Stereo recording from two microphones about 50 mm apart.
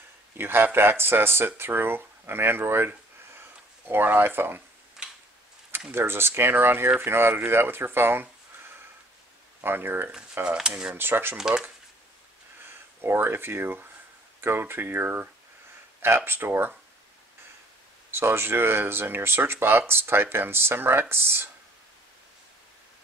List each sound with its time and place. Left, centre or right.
0.4 s speech: right
2.9 s a sound: right
5.0 s tick-tock: centre
5.9 s speech: right
9.6 s speech: right
10.4 s speech: right
11.0 s speech: right
11.3 s speech: centre
12.6 s speech: right
16.3 s speech: right
18.1 s speech: right